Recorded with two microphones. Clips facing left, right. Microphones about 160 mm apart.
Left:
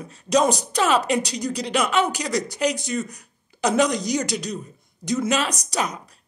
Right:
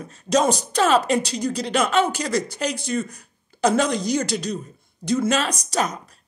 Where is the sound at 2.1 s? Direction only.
15° left (ahead or behind).